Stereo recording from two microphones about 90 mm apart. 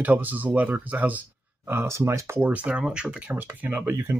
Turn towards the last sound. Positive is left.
turn(degrees=-25)  # may be behind; listen again after turning